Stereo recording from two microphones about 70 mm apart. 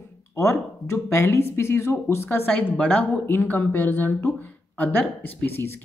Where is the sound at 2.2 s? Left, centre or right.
Left.